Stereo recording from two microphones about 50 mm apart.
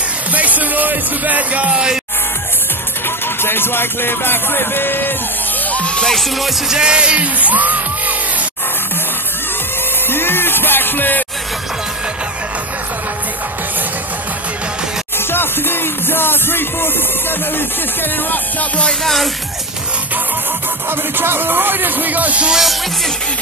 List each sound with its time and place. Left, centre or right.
0.3 s music: right
3.4 s speech: left
5.7 s music: left
6.0 s music: centre
6.7 s music: centre; by 7.8 s right
10.0 s music: left
15.1 s music: left
18.3 s music: left
18.9 s music: centre
20.9 s speech: right
22.5 s music: centre